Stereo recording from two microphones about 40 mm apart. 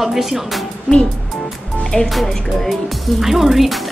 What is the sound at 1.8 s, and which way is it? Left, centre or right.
Music, centre.